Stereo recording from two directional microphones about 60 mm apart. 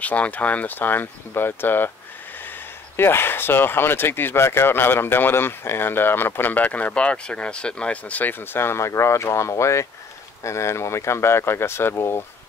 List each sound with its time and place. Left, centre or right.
0.0 s speech: left
3.0 s speech: left